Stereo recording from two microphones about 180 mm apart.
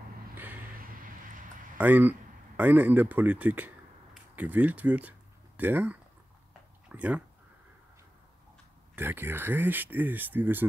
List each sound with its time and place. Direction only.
0.4 s vehicle: 10° right (ahead or behind)
0.7 s a sound: 50° right (ahead or behind)
1.8 s speech: 10° right (ahead or behind)
8.9 s speech: 10° right (ahead or behind)